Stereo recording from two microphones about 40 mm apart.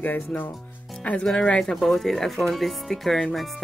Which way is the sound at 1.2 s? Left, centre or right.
Left.